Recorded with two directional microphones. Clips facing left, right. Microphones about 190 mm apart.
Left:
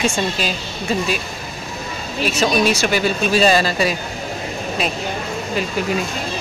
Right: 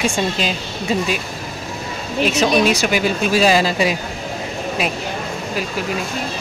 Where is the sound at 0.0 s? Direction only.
20° right (ahead or behind).